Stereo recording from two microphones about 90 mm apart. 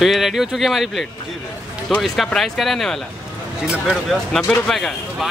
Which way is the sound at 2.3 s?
Centre (ahead or behind).